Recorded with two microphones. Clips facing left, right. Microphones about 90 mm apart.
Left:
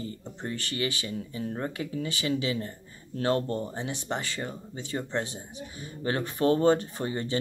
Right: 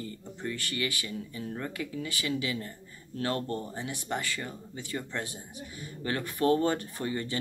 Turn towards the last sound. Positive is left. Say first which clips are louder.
# left 3 dB
turn(degrees=25)  # may be behind; listen again after turning